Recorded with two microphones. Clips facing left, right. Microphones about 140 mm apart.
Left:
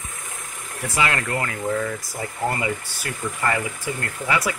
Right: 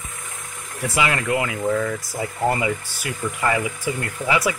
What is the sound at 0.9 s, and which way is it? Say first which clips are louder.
Speech: right 2 dB; 10° right (ahead or behind).